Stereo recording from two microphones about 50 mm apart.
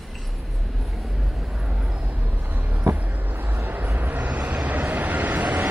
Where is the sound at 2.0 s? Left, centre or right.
Right.